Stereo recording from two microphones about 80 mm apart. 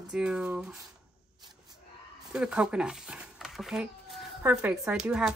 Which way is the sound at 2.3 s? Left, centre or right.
Centre.